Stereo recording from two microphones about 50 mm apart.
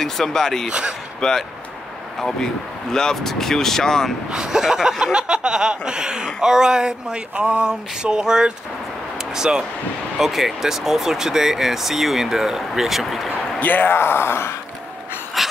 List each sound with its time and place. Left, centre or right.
0.0 s speech: centre
0.7 s speech: centre
1.2 s speech: centre
4.3 s speech: centre
13.6 s speech: left
13.9 s speech: left
15.4 s pant: centre